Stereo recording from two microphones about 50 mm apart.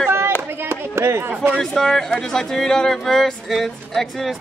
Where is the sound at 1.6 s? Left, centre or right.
Centre.